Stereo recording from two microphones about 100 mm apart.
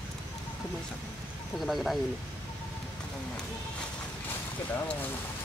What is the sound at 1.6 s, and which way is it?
Speech, centre (ahead or behind).